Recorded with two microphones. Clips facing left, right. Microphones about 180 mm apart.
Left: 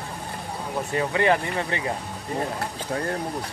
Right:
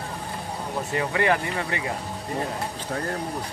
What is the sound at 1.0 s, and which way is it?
Speech, 25° left (ahead or behind).